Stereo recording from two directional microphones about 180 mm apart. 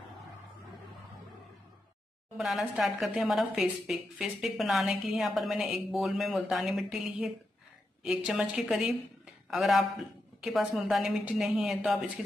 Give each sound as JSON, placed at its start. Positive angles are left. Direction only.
{"t": 2.3, "sound": "speech", "side_deg": 0}